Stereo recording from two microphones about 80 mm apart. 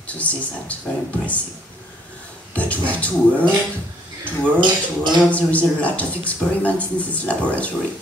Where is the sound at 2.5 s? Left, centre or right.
Centre.